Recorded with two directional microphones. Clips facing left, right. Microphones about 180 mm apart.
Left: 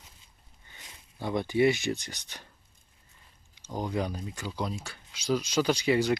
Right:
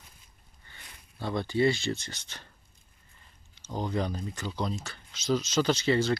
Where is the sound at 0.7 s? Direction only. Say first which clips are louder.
Left 1 dB; 15° left (ahead or behind).